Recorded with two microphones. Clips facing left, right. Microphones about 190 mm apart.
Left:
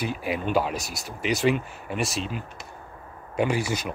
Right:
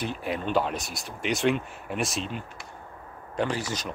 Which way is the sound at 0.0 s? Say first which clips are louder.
Left 2 dB; 5° left (ahead or behind).